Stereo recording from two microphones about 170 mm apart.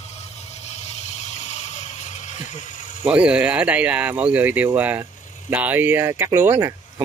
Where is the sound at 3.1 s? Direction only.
5° right (ahead or behind).